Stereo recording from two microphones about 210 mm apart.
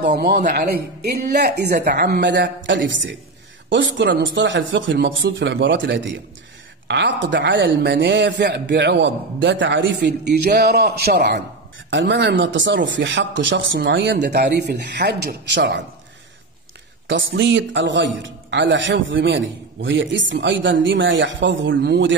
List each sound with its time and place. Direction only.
0.0 s speech: 55° right (ahead or behind)
0.3 s a man's voice: 35° right (ahead or behind)
0.6 s a man's voice: 50° right (ahead or behind)
17.1 s a man's voice: 60° right (ahead or behind)